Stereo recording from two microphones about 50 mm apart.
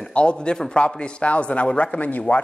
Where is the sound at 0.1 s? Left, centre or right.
Left.